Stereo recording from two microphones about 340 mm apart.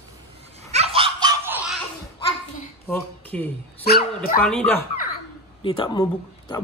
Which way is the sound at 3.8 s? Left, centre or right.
Left.